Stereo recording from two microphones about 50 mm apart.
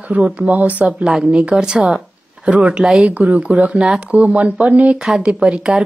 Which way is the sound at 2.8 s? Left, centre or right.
Centre.